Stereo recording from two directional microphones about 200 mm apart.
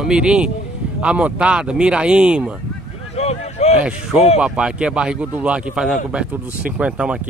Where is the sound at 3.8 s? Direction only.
5° right (ahead or behind).